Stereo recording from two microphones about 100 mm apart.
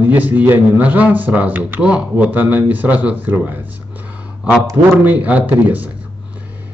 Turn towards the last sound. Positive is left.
turn(degrees=-15)  # may be behind; listen again after turning